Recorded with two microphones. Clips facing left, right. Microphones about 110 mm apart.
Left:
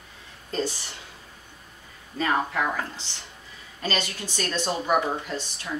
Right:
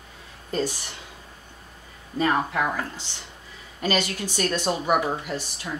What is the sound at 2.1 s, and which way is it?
Speech, 15° right (ahead or behind).